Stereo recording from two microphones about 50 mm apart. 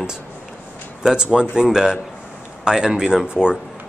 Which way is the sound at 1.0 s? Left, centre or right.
Centre.